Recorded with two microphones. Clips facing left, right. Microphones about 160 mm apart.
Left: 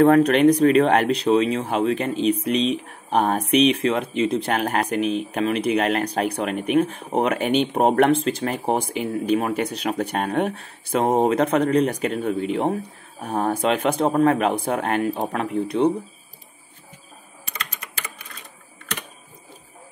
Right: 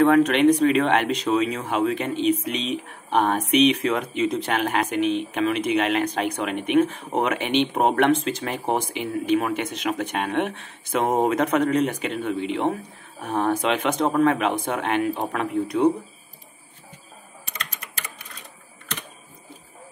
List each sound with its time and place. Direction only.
0.0 s speech: 35° left (ahead or behind)